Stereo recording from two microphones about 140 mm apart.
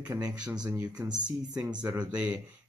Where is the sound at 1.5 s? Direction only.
10° right (ahead or behind).